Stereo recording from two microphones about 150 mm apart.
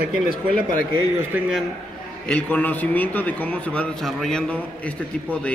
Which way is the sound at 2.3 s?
10° left (ahead or behind).